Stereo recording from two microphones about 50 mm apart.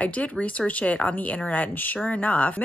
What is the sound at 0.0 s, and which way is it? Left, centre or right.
Speech, left.